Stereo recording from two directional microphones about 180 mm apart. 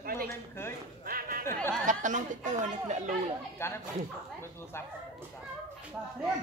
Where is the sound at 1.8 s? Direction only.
45° right (ahead or behind).